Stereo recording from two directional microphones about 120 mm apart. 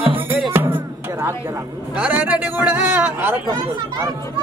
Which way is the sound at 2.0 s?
15° right (ahead or behind).